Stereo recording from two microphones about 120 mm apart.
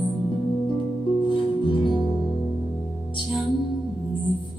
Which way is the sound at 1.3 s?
45° left (ahead or behind).